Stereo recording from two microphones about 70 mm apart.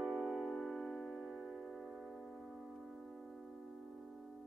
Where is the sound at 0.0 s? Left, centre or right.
Centre.